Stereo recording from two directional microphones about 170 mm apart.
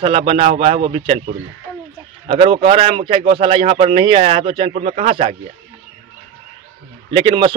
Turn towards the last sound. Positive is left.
turn(degrees=-30)  # may be behind; listen again after turning